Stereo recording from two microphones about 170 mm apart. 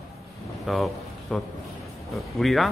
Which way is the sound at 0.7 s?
Centre (ahead or behind).